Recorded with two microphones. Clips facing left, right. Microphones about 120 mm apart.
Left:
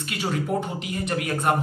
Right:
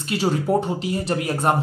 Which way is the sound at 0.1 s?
30° right (ahead or behind).